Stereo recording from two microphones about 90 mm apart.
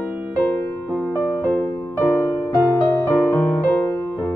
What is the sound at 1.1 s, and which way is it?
Music, 20° left (ahead or behind).